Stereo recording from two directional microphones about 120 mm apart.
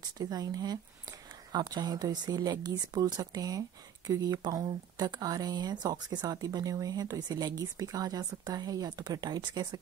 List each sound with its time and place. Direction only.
0.2 s speech: 30° right (ahead or behind)